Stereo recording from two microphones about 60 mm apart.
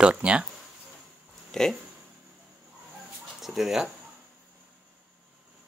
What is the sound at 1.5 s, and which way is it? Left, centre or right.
Speech, centre.